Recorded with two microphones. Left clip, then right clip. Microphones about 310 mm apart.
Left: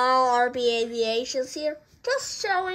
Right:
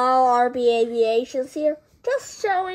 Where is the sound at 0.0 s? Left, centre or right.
Centre.